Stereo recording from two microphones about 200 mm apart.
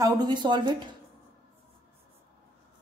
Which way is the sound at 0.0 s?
20° right (ahead or behind).